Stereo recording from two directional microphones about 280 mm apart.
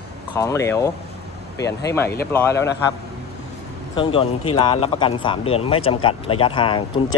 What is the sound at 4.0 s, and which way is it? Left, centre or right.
Speech, centre.